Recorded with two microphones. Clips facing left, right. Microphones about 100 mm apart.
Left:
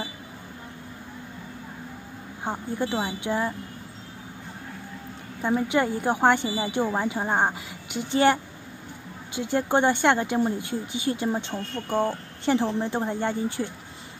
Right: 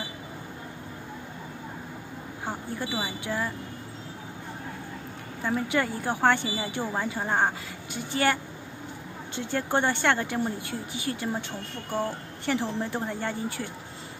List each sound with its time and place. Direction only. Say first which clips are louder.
2.4 s speech: left 5 dB; 20° left (ahead or behind)
5.4 s speech: left 4 dB; 20° left (ahead or behind)